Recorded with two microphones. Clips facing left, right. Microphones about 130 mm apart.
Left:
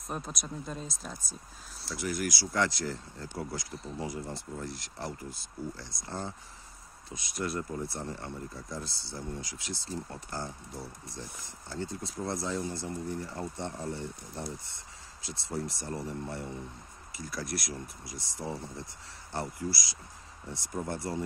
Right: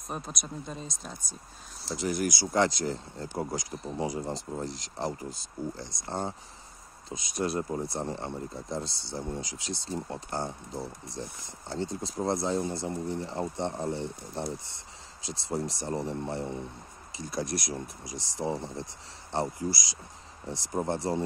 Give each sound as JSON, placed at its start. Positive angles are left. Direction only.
{"t": 0.1, "sound": "speech", "side_deg": 0}
{"t": 1.9, "sound": "speech", "side_deg": -25}
{"t": 7.3, "sound": "speech", "side_deg": -20}
{"t": 15.2, "sound": "speech", "side_deg": -20}